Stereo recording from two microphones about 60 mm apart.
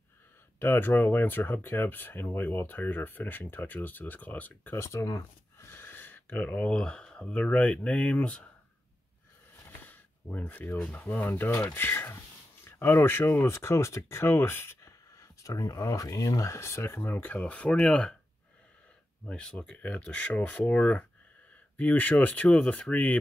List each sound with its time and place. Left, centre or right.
0.6 s speech: left
4.7 s speech: left
5.7 s a sound: left
6.8 s speech: centre
9.7 s a sound: left
11.1 s speech: left
14.8 s speech: left
16.9 s speech: left; by 18.1 s centre
19.4 s speech: centre
19.8 s speech: left